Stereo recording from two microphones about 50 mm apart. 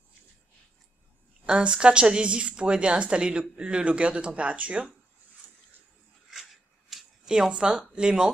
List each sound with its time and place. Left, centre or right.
1.4 s a woman's voice: centre
6.3 s a sound: centre
7.9 s speech: centre